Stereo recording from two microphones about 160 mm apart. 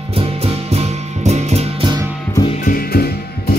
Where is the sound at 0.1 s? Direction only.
40° right (ahead or behind).